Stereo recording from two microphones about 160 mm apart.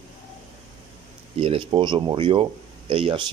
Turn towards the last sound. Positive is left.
turn(degrees=-35)  # may be behind; listen again after turning